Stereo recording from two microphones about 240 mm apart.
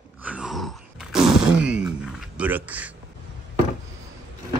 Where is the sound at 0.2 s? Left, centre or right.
Centre.